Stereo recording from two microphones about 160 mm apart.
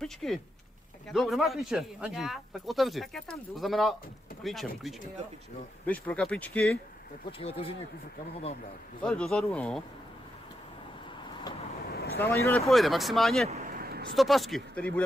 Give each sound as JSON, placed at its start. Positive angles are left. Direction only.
{"t": 0.0, "sound": "speech", "side_deg": 0}
{"t": 7.3, "sound": "speech", "side_deg": 35}
{"t": 9.0, "sound": "speech", "side_deg": 5}
{"t": 11.8, "sound": "vehicle", "side_deg": 75}
{"t": 12.2, "sound": "speech", "side_deg": 10}
{"t": 12.6, "sound": "speech", "side_deg": 0}
{"t": 13.6, "sound": "vehicle", "side_deg": -65}
{"t": 14.1, "sound": "speech", "side_deg": 0}